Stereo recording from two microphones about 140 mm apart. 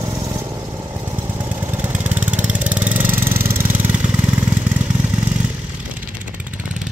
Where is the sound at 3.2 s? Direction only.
15° right (ahead or behind).